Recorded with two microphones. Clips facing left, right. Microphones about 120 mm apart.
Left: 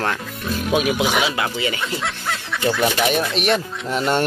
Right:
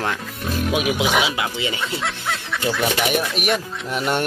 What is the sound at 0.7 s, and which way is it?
Speech, 15° right (ahead or behind).